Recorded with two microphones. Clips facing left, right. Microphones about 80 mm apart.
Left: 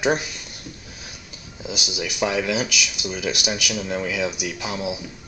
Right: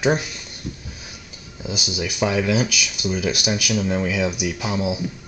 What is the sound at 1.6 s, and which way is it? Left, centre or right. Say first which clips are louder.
Speech: right 2 dB; centre.